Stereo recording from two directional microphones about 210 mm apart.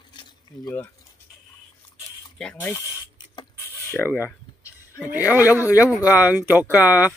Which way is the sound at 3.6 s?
10° left (ahead or behind).